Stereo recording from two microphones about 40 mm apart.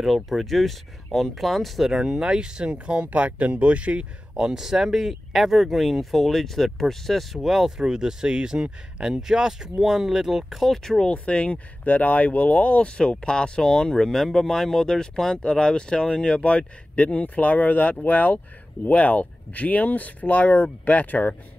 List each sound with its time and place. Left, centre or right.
0.0 s speech: centre
1.9 s speech: centre; by 4.0 s right
4.4 s speech: centre
11.1 s speech: left
11.8 s speech: left